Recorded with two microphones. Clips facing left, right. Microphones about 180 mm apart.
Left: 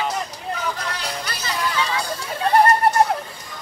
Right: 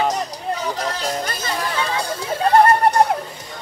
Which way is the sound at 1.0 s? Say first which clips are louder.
Right 5 dB; 45° right (ahead or behind).